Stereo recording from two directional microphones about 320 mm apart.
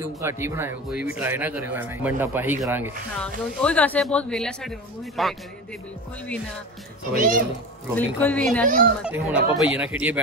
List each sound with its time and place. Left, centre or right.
0.0 s speech: centre
7.2 s speech: right
7.9 s speech: centre